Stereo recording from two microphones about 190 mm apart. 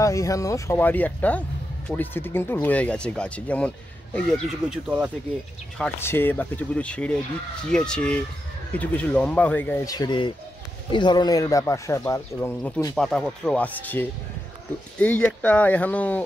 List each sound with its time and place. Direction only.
0.0 s speech: 15° left (ahead or behind); by 5.1 s 5° right (ahead or behind)
5.8 s speech: 10° left (ahead or behind)
9.9 s speech: 25° left (ahead or behind); by 16.3 s 10° left (ahead or behind)